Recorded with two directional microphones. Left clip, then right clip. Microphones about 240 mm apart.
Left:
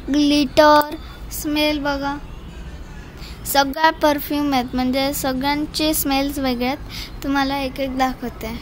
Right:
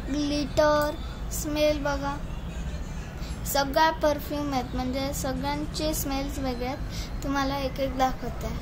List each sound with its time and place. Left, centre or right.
0.1 s a woman's voice: left
3.4 s a woman's voice: left